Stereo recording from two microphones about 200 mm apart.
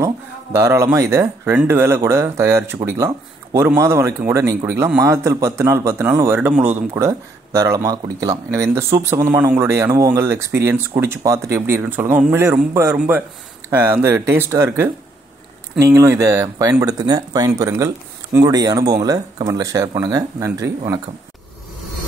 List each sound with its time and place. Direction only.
0.6 s speech: 15° right (ahead or behind)